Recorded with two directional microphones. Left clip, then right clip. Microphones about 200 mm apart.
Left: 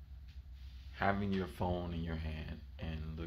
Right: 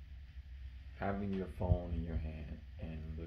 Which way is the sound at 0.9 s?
15° left (ahead or behind).